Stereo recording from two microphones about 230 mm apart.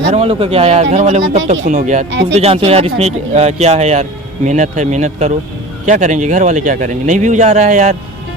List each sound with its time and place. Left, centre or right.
0.1 s speech: right